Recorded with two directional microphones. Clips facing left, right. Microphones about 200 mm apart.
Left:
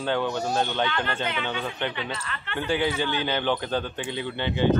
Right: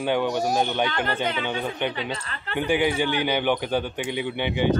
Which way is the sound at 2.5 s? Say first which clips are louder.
Right 3 dB; 15° right (ahead or behind).